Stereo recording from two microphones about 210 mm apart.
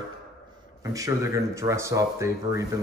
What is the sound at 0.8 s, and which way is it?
A man's voice, 15° right (ahead or behind).